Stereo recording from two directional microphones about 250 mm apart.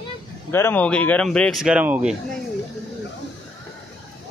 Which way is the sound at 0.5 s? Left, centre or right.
Centre.